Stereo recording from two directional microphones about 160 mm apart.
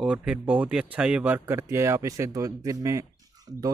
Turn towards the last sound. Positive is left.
turn(degrees=-25)  # may be behind; listen again after turning